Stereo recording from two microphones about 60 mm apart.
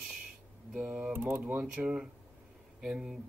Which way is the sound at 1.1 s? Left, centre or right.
Right.